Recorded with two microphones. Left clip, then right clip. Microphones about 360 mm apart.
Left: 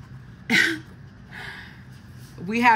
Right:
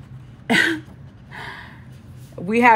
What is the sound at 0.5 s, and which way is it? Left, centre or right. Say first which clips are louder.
Cough: right 2 dB; centre.